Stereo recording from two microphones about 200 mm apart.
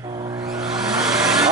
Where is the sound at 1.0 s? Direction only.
Centre (ahead or behind).